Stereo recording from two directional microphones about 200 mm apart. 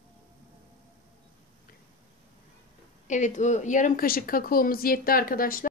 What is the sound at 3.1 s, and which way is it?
Speech, 35° left (ahead or behind).